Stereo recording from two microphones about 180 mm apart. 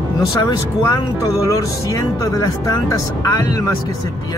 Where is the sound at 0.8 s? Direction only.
20° left (ahead or behind).